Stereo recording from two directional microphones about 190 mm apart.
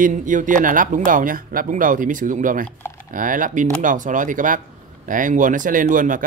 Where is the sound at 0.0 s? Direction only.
45° right (ahead or behind).